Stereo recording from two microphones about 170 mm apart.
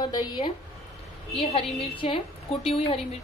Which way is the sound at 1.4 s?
35° left (ahead or behind).